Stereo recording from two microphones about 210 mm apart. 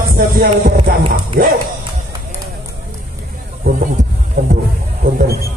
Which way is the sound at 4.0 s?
35° right (ahead or behind).